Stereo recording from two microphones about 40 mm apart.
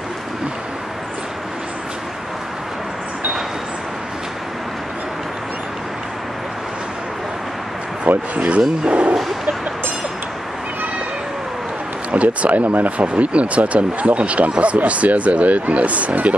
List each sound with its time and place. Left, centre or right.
8.4 s speech: right
12.1 s speech: right